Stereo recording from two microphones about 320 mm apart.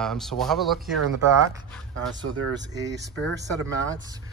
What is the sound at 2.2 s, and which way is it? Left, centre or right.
Speech, right.